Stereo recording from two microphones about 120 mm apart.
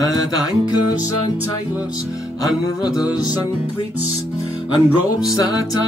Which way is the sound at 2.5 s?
5° right (ahead or behind).